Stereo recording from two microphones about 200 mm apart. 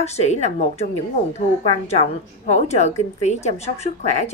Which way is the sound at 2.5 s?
35° left (ahead or behind).